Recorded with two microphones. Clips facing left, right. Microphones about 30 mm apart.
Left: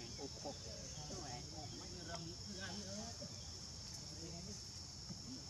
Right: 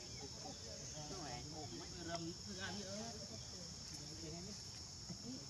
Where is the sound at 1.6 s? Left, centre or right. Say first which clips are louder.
Right 1 dB; centre.